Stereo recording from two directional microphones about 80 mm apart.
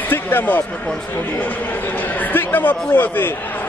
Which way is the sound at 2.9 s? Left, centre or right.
Left.